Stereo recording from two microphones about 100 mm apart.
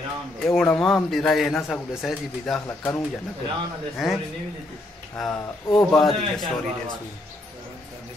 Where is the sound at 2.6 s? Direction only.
20° left (ahead or behind).